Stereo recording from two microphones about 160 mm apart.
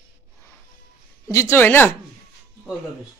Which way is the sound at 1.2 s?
15° left (ahead or behind).